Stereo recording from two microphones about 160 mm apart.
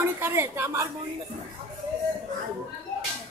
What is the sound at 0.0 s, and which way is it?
Speech, 15° right (ahead or behind).